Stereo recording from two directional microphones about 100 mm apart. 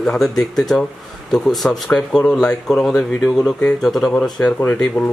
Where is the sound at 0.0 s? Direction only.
10° left (ahead or behind).